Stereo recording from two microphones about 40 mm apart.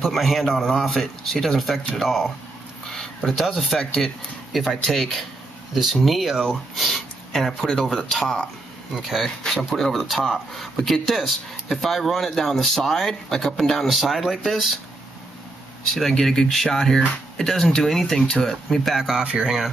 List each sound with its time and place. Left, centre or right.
0.0 s a man's voice: centre
3.3 s a man's voice: centre
6.3 s speech: centre
6.7 s a sound: centre
7.8 s speech: centre
8.9 s a man's voice: centre
9.2 s a man's voice: centre
15.9 s a man's voice: centre
18.1 s speech: centre
18.4 s a man's voice: centre
19.1 s a sound: right